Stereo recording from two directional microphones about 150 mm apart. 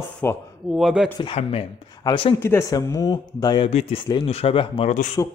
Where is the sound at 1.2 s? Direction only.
40° left (ahead or behind).